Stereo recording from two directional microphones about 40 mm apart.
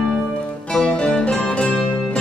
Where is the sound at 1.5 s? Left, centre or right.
Left.